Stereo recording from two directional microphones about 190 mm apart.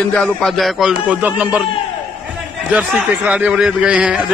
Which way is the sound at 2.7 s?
10° right (ahead or behind).